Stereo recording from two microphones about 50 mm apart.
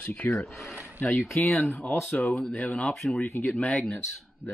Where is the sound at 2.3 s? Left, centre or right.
Centre.